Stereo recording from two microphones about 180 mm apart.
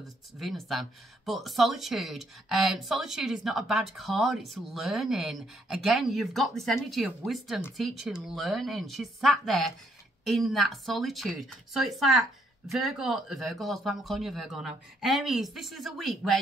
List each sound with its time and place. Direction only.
0.4 s speech: centre (ahead or behind)